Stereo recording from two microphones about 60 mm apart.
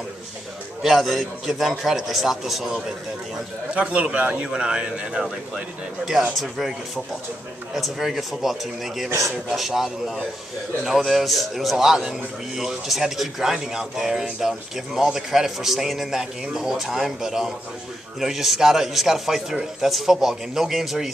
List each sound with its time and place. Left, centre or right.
0.8 s a man's voice: centre
3.7 s a man's voice: right
7.7 s a man's voice: centre